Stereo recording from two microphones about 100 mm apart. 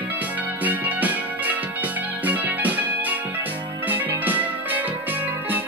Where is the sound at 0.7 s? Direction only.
15° right (ahead or behind).